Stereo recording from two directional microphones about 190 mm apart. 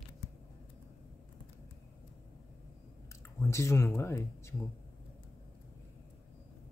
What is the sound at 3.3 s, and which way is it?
Speech, 15° left (ahead or behind).